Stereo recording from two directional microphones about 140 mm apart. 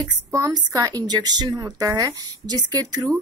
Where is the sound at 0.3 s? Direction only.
25° right (ahead or behind).